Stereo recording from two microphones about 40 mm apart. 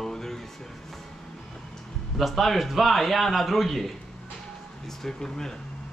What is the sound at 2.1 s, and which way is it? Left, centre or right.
A man's voice, centre.